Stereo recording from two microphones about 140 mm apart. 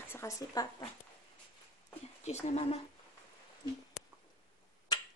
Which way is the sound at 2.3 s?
50° left (ahead or behind).